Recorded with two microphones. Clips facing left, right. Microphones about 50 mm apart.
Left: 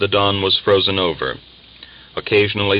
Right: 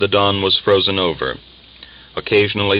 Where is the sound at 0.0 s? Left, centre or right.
Centre.